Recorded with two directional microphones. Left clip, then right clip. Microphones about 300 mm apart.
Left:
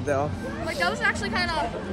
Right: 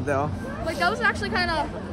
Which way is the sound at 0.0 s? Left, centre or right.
Centre.